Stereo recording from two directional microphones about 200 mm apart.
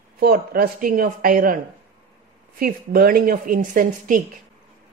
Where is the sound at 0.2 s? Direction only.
50° right (ahead or behind).